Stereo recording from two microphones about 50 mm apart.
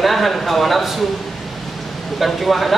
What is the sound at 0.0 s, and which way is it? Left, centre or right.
Speech, centre.